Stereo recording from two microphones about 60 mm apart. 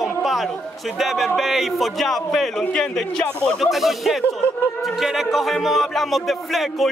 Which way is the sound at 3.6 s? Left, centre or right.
Centre.